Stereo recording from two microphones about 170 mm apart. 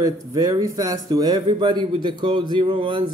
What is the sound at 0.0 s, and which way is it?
Speech, 20° right (ahead or behind).